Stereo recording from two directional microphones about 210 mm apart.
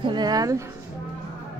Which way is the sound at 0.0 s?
20° right (ahead or behind).